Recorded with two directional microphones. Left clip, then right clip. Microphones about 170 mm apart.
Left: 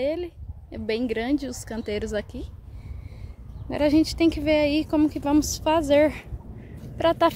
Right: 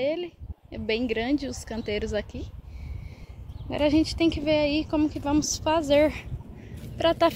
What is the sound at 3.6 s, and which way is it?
Speech, 15° left (ahead or behind).